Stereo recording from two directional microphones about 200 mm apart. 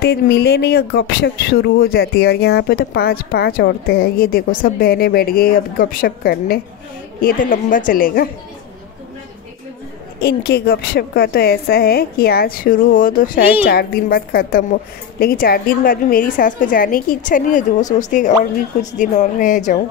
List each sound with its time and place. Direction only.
0.0 s speech: 55° left (ahead or behind)
10.2 s a woman's voice: 55° left (ahead or behind)